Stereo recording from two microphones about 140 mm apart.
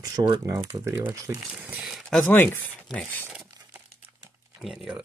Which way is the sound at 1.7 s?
5° right (ahead or behind).